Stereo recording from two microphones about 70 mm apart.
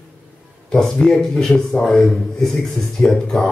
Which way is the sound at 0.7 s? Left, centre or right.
Centre.